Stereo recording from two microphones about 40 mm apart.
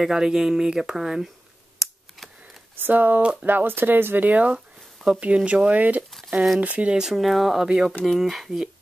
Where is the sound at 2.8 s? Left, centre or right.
Right.